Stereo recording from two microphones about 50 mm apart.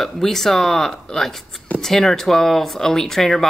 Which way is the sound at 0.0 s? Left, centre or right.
Centre.